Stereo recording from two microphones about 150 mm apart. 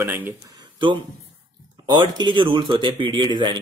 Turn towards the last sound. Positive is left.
turn(degrees=-30)  # may be behind; listen again after turning